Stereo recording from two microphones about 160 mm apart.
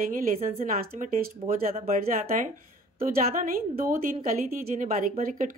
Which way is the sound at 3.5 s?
60° right (ahead or behind).